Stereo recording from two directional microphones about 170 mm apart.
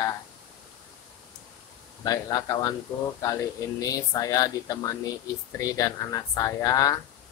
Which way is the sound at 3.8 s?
20° left (ahead or behind).